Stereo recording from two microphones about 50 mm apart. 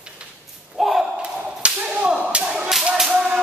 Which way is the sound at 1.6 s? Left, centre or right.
Right.